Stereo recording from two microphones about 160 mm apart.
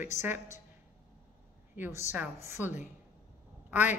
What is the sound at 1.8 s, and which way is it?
Speech, 15° right (ahead or behind).